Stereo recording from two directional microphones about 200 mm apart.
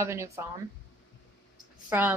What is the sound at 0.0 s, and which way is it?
Speech, 15° right (ahead or behind).